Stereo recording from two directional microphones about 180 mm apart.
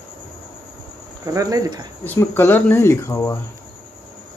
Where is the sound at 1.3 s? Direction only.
20° right (ahead or behind).